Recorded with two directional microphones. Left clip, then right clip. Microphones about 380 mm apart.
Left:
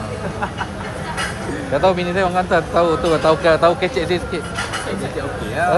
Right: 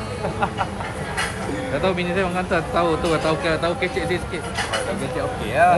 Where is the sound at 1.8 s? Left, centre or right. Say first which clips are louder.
Left 6 dB; centre.